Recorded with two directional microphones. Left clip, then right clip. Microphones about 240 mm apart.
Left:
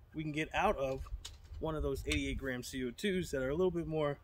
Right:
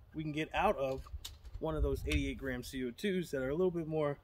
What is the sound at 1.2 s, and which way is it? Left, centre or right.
Mechanisms, right.